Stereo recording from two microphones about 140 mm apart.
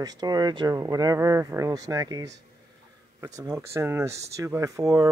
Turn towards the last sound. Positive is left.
turn(degrees=-25)  # may be behind; listen again after turning